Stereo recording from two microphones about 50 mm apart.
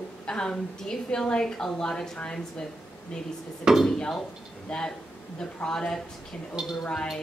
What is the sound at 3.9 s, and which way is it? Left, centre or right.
A woman's voice, centre.